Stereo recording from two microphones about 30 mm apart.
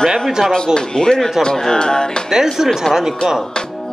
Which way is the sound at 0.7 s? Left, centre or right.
Left.